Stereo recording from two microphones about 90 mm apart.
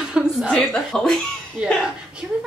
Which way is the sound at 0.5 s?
5° left (ahead or behind).